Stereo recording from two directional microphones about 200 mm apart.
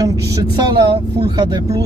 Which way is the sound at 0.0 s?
20° right (ahead or behind).